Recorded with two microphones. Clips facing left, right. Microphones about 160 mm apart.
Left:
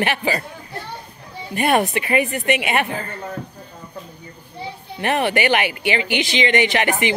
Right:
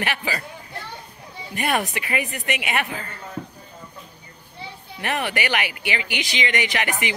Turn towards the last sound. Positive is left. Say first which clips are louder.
# left 6 dB
turn(degrees=30)  # may be behind; listen again after turning